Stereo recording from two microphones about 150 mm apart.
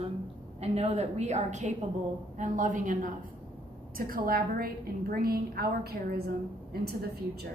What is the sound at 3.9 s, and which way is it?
A woman's voice, 75° right (ahead or behind).